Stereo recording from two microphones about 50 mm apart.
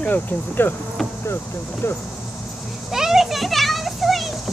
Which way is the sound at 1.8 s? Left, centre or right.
Left.